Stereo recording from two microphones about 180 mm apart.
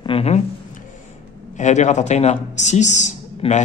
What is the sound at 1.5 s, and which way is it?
A woman's voice, 40° left (ahead or behind).